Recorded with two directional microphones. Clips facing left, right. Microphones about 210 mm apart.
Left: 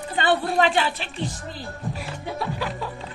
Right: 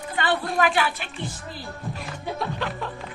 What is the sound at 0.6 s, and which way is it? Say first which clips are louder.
Speech: right 1 dB; 25° left (ahead or behind).